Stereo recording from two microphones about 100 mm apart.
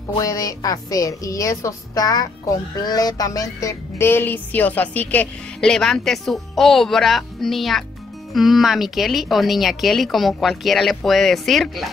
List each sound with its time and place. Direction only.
0.2 s a woman's voice: 35° left (ahead or behind)
2.8 s music: 40° left (ahead or behind); by 5.3 s 15° left (ahead or behind)
5.6 s speech: 5° left (ahead or behind)